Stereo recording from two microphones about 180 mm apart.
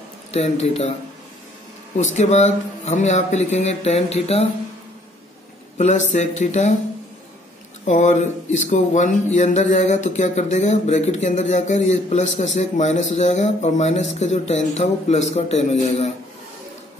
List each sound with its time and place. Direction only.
0.3 s speech: 35° left (ahead or behind)
2.0 s speech: 40° left (ahead or behind)
5.8 s speech: 40° left (ahead or behind)
7.8 s speech: 40° left (ahead or behind)